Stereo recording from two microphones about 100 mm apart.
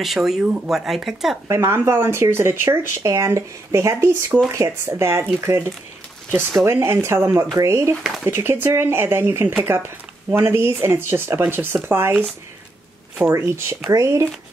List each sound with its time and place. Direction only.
0.0 s speech: centre (ahead or behind)
1.5 s speech: 25° right (ahead or behind)
13.3 s speech: 30° right (ahead or behind)